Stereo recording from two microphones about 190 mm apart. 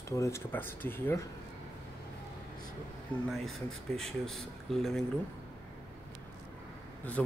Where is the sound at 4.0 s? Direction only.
Centre (ahead or behind).